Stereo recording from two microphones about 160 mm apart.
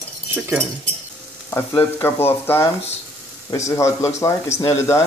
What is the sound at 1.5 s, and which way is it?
Frying, 15° left (ahead or behind).